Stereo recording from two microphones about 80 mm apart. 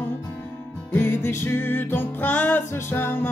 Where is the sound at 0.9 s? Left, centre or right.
Left.